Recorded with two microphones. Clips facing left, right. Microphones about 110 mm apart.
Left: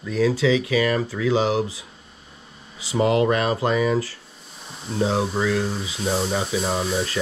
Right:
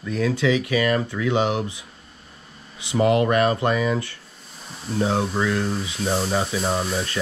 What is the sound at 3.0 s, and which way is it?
Speech, 25° left (ahead or behind).